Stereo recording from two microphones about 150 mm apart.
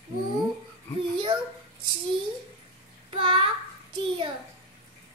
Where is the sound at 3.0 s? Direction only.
35° right (ahead or behind).